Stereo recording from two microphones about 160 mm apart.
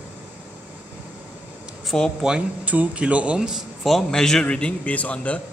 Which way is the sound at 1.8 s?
Centre (ahead or behind).